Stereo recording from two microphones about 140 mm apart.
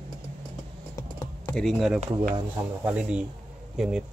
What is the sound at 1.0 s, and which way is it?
Computer keyboard, 20° left (ahead or behind).